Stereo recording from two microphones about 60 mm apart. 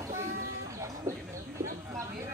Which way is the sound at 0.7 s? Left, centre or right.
Right.